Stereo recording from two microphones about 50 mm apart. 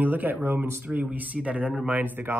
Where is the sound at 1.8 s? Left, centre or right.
Right.